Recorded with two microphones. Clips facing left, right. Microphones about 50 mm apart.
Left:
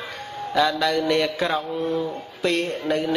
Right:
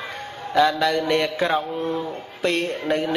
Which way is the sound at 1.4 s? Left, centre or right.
Centre.